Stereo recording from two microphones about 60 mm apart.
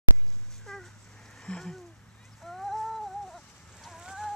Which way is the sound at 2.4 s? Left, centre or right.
Centre.